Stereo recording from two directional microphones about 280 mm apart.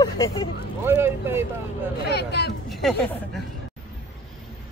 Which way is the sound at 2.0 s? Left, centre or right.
Left.